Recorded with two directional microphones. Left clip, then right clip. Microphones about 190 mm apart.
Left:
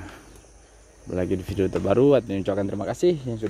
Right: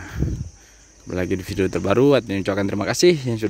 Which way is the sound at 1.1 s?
10° right (ahead or behind).